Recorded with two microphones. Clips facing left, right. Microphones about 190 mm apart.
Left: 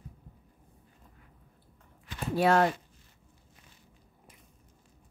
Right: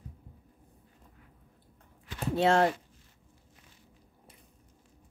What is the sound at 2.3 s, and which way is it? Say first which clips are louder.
Speech: even; 25° right (ahead or behind).